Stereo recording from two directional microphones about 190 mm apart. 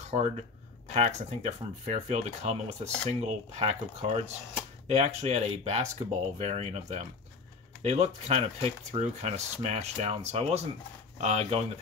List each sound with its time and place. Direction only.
0.1 s speech: 35° right (ahead or behind)